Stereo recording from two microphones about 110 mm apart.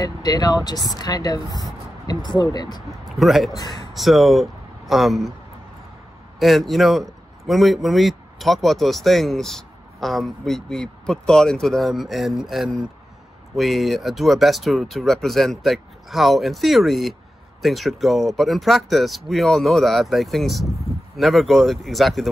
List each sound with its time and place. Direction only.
0.0 s speech: 35° left (ahead or behind)
3.1 s a man's voice: centre (ahead or behind)
3.5 s speech: 35° left (ahead or behind)
3.9 s speech: centre (ahead or behind)
6.4 s a man's voice: centre (ahead or behind)